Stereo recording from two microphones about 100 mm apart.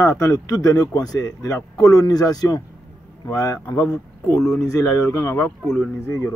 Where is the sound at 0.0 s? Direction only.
30° left (ahead or behind).